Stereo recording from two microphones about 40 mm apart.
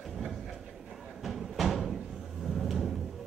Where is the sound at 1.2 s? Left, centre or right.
Centre.